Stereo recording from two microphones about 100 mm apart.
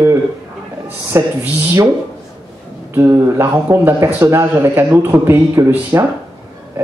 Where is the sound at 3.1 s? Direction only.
30° right (ahead or behind).